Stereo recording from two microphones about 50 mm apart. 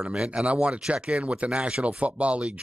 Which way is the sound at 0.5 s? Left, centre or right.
Right.